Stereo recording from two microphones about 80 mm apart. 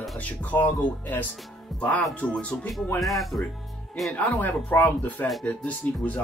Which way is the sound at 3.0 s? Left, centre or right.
Centre.